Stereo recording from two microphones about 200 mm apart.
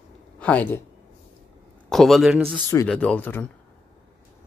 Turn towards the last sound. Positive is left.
turn(degrees=10)  # may be behind; listen again after turning